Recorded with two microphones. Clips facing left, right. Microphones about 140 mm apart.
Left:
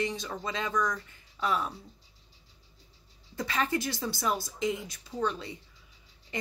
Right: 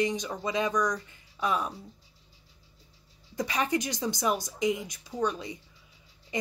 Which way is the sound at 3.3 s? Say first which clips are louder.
Right 2 dB; 15° right (ahead or behind).